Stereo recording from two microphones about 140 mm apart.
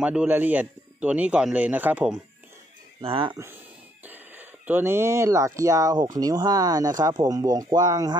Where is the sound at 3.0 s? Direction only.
40° right (ahead or behind).